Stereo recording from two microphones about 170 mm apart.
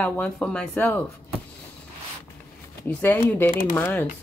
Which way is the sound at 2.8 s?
10° left (ahead or behind).